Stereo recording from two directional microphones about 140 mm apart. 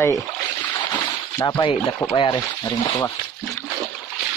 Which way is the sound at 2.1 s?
30° left (ahead or behind).